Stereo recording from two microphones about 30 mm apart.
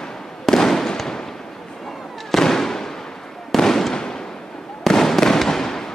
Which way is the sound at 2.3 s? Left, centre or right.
Centre.